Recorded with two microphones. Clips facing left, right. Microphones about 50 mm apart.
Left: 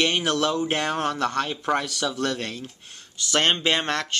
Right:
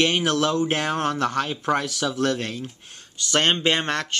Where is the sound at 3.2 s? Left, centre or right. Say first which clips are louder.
Right 1 dB; centre.